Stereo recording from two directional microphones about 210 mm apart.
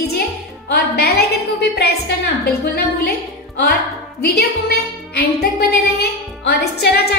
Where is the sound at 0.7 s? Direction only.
50° left (ahead or behind).